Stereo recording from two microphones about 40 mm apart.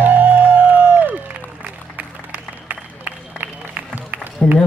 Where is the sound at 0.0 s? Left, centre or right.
Right.